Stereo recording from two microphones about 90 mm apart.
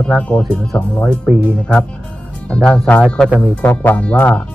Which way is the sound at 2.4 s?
5° left (ahead or behind).